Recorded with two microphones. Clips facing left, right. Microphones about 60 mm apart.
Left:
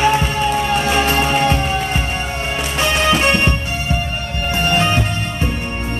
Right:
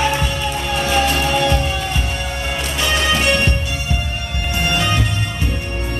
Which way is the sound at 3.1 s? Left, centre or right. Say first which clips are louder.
Left 2 dB; left.